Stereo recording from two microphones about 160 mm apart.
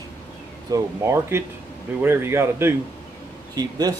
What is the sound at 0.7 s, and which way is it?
Speech, 20° right (ahead or behind).